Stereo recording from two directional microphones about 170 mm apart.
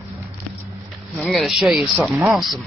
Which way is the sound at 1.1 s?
Centre (ahead or behind).